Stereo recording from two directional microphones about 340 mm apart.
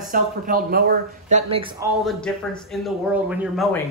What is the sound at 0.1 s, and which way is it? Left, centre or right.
Speech, right.